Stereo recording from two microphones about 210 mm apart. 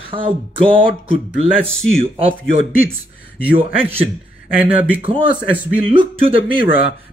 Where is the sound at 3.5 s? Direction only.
25° right (ahead or behind).